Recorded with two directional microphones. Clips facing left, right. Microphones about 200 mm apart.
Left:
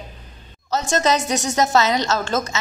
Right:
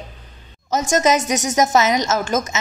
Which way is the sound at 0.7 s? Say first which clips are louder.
Right 2 dB; 15° right (ahead or behind).